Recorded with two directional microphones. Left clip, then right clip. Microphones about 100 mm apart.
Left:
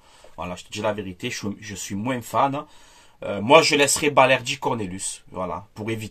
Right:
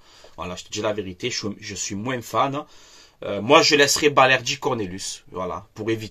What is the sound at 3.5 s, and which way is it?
Speech, 35° left (ahead or behind).